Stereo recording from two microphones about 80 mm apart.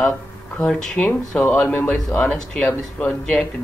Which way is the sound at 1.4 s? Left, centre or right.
Left.